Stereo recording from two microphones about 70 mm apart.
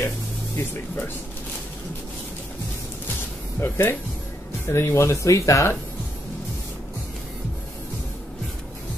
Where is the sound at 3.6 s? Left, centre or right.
Left.